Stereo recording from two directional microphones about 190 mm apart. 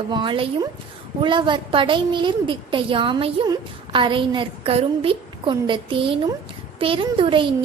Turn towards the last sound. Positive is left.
turn(degrees=-25)  # may be behind; listen again after turning